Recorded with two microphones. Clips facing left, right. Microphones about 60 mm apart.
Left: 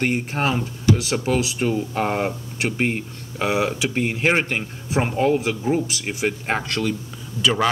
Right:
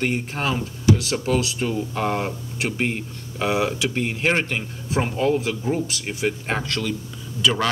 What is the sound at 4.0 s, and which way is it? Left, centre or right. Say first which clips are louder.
Speech: left 3 dB; centre.